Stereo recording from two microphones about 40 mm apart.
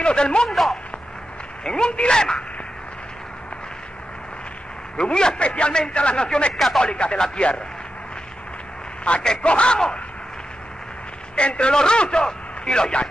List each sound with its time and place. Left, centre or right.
0.0 s a man's voice: left
0.5 s a sound: centre
1.6 s a man's voice: centre
4.9 s a man's voice: left
9.1 s a man's voice: left
11.3 s a man's voice: left